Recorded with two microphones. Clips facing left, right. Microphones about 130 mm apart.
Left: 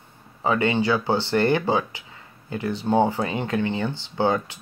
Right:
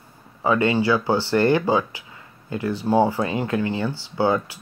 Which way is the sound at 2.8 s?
20° left (ahead or behind).